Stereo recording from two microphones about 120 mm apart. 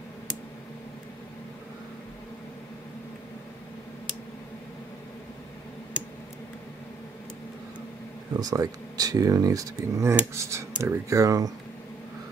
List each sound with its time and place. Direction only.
8.4 s speech: 30° right (ahead or behind)